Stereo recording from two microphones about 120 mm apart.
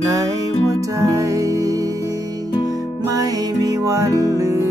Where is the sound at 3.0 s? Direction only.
30° right (ahead or behind).